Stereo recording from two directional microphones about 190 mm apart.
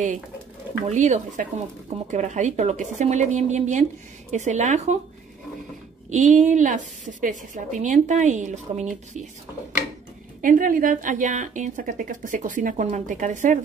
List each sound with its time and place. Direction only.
0.8 s speech: 40° right (ahead or behind)
6.0 s speech: 40° right (ahead or behind)
10.4 s speech: 45° right (ahead or behind)